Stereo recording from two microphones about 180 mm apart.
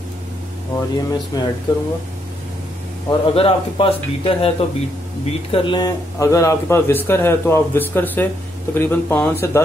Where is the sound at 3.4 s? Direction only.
30° left (ahead or behind).